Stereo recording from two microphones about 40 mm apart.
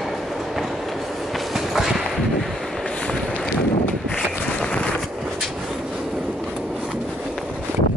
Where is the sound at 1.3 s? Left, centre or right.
Centre.